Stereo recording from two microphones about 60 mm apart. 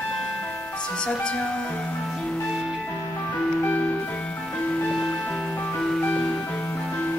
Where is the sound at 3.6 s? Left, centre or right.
Left.